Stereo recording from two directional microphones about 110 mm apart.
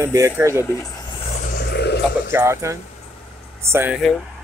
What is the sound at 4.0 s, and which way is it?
Speech, centre (ahead or behind).